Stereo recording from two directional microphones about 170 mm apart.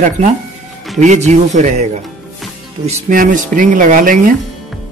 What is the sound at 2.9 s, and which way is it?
Speech, 50° right (ahead or behind).